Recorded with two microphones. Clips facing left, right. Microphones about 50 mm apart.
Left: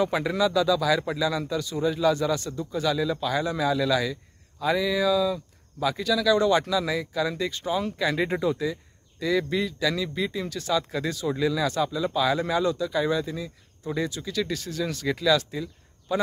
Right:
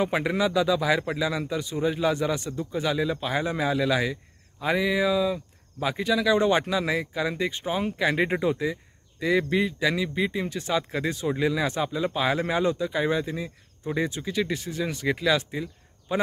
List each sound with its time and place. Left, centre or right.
0.0 s a man's voice: right